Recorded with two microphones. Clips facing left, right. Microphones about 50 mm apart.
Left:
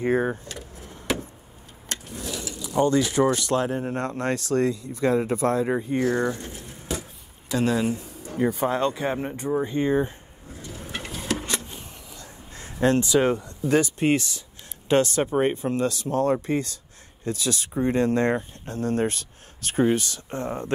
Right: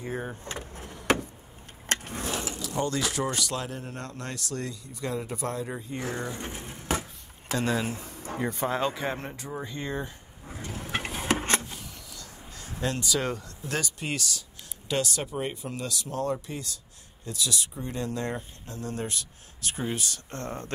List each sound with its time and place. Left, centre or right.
0.0 s speech: left
0.5 s vehicle: right
2.7 s speech: left
6.3 s speech: right
6.9 s a sound: right
7.5 s speech: centre
7.9 s a sound: right
8.4 s speech: centre
9.5 s speech: left
10.5 s a sound: right
12.2 s speech: left
20.2 s speech: centre